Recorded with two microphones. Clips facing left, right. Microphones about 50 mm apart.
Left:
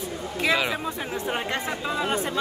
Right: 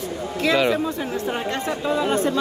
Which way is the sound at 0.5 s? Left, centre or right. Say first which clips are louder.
Right 7 dB; centre.